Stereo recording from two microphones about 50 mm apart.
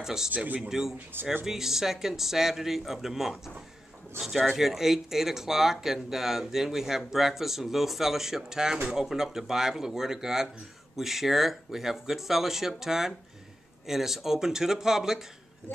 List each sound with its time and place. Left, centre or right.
0.0 s speech: centre